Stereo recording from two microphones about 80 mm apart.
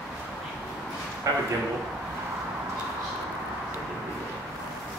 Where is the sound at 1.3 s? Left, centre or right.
Right.